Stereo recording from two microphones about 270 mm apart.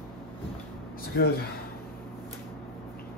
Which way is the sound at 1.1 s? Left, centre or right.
Left.